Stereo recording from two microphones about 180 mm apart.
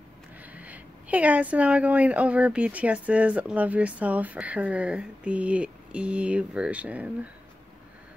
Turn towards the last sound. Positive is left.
turn(degrees=-5)  # may be behind; listen again after turning